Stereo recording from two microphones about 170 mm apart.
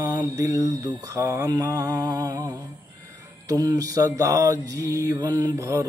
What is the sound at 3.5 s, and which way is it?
Mantra, 20° right (ahead or behind).